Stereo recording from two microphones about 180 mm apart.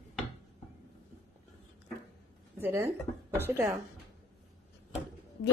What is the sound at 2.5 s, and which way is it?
A woman's voice, 10° right (ahead or behind).